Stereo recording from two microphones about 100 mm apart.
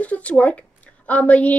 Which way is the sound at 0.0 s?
15° left (ahead or behind).